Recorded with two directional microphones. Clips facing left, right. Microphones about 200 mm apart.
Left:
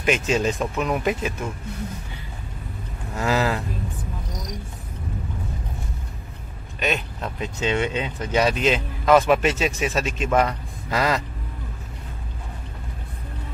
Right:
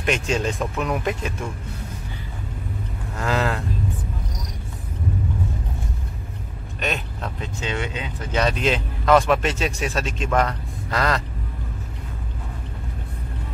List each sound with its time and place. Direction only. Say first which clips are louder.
0.0 s speech: left 2 dB; 5° left (ahead or behind)
3.2 s speech: left 1 dB; 5° left (ahead or behind)
6.8 s speech: left 2 dB; 5° left (ahead or behind)
7.3 s speech: left 6 dB; 20° left (ahead or behind)
8.3 s speech: left 1 dB; 10° left (ahead or behind)